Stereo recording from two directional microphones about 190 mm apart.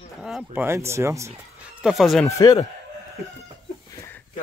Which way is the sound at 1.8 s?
Centre (ahead or behind).